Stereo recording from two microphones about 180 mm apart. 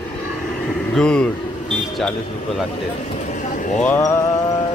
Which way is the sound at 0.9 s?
5° left (ahead or behind).